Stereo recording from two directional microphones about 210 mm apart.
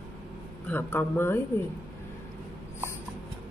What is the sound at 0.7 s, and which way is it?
Speech, 10° left (ahead or behind).